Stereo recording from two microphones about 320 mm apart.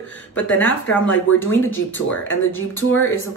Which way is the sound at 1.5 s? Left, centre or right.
Left.